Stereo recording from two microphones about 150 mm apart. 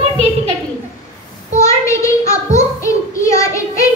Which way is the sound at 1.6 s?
20° left (ahead or behind).